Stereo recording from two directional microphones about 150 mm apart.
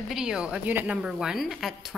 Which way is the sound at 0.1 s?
5° right (ahead or behind).